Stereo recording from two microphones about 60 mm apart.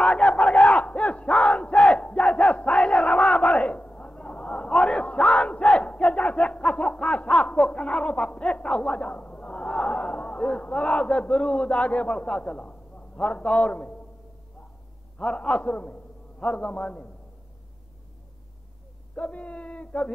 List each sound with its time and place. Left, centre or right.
0.0 s battle cry: centre
15.1 s a man's voice: centre
19.1 s a sound: left